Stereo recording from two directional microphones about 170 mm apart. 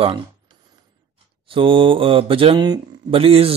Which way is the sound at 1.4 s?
30° right (ahead or behind).